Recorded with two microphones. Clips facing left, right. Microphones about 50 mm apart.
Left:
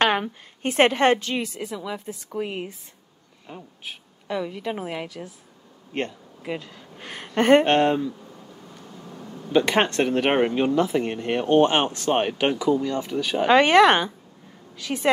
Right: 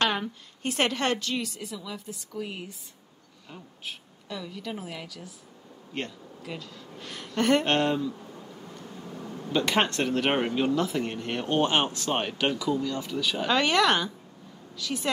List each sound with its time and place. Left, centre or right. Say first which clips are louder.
0.0 s a woman's voice: left 6 dB; left
3.4 s speech: left 3 dB; centre
4.3 s a woman's voice: left 8 dB; left
8.9 s a sound: even; centre
9.5 s a woman's voice: left 5 dB; left